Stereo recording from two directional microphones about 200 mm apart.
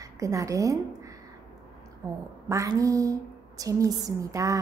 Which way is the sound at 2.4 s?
15° right (ahead or behind).